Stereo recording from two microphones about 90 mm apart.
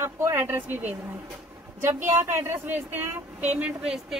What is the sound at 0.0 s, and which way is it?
A woman's voice, 25° right (ahead or behind).